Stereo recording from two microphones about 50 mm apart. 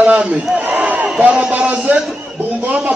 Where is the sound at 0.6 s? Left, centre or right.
Right.